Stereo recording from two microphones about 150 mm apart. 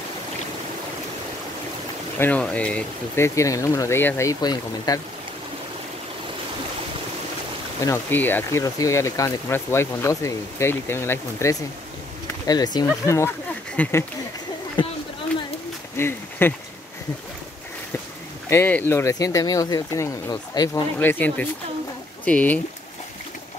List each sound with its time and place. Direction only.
2.1 s speech: 10° left (ahead or behind)
3.3 s speech: 20° left (ahead or behind)
7.8 s speech: 15° left (ahead or behind)
14.8 s speech: 30° left (ahead or behind)
16.0 s speech: 15° left (ahead or behind)
18.5 s speech: 15° left (ahead or behind)
21.0 s speech: 10° left (ahead or behind)